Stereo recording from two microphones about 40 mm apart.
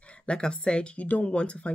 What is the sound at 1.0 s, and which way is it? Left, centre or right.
Speech, left.